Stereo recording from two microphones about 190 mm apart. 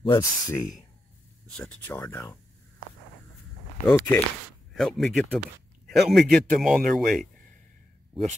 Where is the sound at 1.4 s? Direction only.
5° left (ahead or behind).